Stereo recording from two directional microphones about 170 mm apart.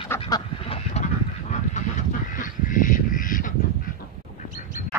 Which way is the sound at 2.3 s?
50° left (ahead or behind).